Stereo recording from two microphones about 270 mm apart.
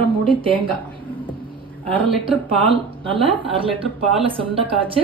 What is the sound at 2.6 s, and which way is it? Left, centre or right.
Speech, centre.